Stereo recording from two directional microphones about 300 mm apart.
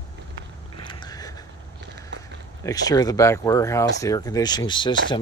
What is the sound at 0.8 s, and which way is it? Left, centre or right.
Vehicle, centre.